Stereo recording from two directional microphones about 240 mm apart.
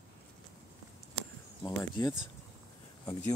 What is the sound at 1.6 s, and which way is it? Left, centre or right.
Speech, centre.